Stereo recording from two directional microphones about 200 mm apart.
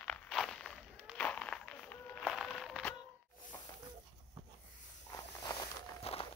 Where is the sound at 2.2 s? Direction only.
Centre (ahead or behind).